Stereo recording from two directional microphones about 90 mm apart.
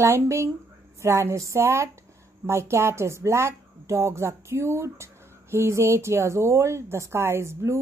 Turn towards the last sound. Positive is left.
turn(degrees=-30)  # may be behind; listen again after turning